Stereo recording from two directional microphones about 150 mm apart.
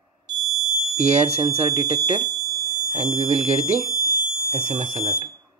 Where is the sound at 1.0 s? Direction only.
45° right (ahead or behind).